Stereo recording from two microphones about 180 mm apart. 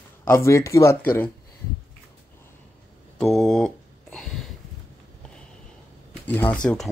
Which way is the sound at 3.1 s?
Centre (ahead or behind).